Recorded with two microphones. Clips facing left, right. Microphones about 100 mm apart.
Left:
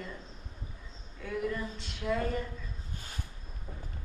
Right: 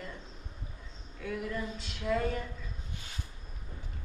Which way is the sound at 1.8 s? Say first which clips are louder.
Right 1 dB; centre (ahead or behind).